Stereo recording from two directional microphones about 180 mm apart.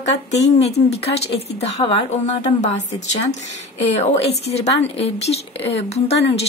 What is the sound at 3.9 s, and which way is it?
A woman's voice, 35° left (ahead or behind).